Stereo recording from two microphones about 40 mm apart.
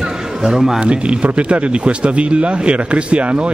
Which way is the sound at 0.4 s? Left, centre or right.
Centre.